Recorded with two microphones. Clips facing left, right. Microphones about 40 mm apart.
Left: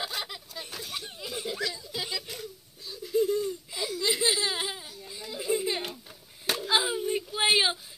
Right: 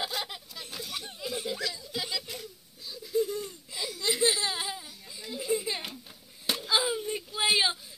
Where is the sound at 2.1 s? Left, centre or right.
Left.